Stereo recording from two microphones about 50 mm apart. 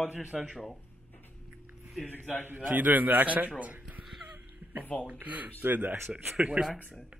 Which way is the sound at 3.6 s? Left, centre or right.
Right.